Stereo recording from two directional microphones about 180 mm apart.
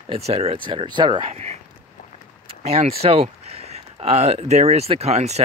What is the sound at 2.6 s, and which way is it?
Speech, 35° right (ahead or behind).